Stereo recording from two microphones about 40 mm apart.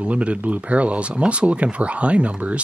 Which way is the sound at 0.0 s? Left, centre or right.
Right.